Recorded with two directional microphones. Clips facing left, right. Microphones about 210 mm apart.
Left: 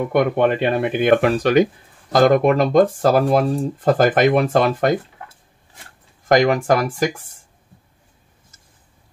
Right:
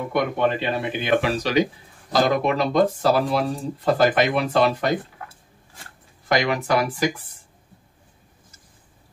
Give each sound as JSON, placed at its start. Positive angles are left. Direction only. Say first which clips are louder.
{"t": 0.1, "sound": "speech", "louder": "left 4 dB", "side_deg": 55}
{"t": 6.2, "sound": "speech", "louder": "left 7 dB", "side_deg": 45}